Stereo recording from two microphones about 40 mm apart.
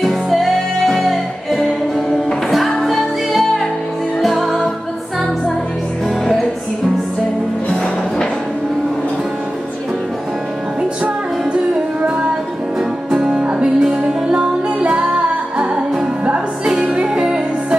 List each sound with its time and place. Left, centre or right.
0.0 s music: centre
13.1 s music: right
16.9 s music: right